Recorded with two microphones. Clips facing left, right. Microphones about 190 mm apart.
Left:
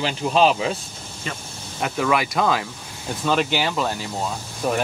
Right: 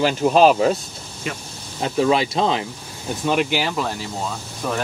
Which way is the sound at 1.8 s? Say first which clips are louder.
Right 3 dB; 25° right (ahead or behind).